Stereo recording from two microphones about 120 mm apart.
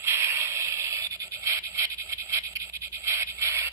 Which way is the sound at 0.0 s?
20° right (ahead or behind).